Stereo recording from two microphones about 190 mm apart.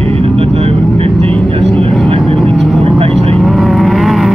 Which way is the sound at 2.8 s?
30° right (ahead or behind).